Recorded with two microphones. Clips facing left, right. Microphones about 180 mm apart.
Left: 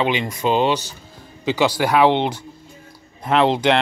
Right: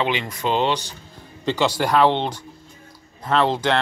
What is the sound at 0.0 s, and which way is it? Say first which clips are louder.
A man's voice: left 3 dB; 15° left (ahead or behind).